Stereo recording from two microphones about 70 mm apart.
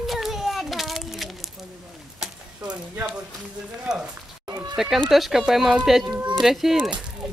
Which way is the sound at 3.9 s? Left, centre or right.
Centre.